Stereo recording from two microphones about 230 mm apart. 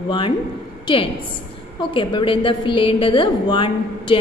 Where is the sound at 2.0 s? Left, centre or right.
Left.